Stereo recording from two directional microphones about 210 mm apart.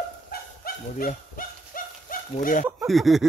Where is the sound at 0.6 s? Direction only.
40° left (ahead or behind).